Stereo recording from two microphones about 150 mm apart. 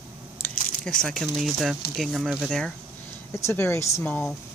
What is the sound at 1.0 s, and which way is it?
Speech, centre (ahead or behind).